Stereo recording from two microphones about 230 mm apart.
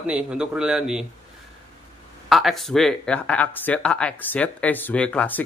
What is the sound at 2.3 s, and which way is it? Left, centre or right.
Speech, centre.